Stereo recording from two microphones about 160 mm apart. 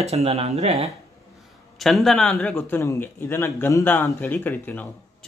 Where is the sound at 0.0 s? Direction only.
40° right (ahead or behind).